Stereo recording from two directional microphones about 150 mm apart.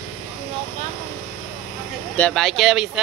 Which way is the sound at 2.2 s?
Centre (ahead or behind).